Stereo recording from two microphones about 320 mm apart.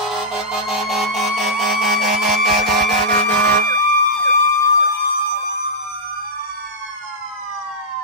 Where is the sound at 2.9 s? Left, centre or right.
Right.